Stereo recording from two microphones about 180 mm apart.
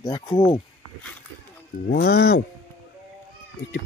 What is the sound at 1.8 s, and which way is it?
Speech, 60° left (ahead or behind).